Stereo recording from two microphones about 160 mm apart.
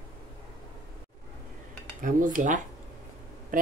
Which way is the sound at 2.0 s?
55° right (ahead or behind).